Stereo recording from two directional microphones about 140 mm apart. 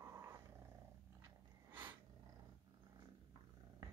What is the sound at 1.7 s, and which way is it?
Snort, 15° right (ahead or behind).